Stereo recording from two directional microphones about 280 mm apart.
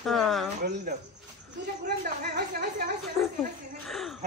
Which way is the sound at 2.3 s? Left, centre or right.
Right.